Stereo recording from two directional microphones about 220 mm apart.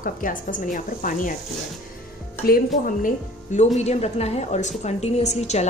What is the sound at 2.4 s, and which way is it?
A woman's voice, 40° left (ahead or behind).